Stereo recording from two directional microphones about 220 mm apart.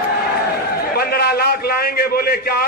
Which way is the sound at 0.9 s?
45° left (ahead or behind).